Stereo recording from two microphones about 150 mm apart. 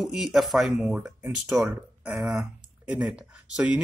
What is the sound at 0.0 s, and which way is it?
Speech, centre (ahead or behind).